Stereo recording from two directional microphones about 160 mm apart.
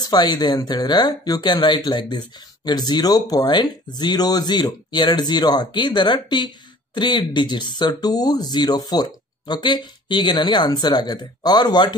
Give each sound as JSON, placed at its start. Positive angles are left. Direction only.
{"t": 0.0, "sound": "speech", "side_deg": 25}